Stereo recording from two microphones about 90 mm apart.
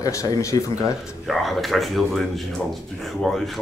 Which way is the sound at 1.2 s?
Centre (ahead or behind).